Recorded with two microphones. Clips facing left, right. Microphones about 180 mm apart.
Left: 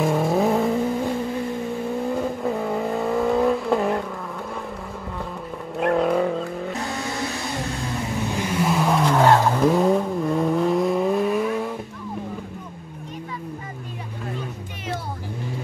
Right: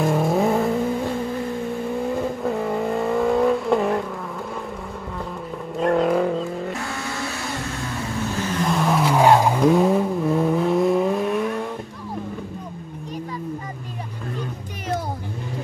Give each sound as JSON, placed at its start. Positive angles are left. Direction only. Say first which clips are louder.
{"t": 0.0, "sound": "vehicle", "louder": "even", "side_deg": 0}
{"t": 2.1, "sound": "vehicle", "louder": "right 1 dB", "side_deg": 0}
{"t": 5.8, "sound": "vehicle", "louder": "right 1 dB", "side_deg": 0}
{"t": 6.8, "sound": "vehicle", "louder": "left 1 dB", "side_deg": 20}
{"t": 9.6, "sound": "vehicle", "louder": "right 1 dB", "side_deg": 0}